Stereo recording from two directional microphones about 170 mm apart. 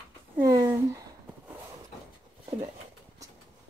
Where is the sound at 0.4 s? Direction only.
20° right (ahead or behind).